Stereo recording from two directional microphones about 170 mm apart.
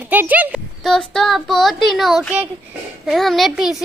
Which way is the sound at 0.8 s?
Centre (ahead or behind).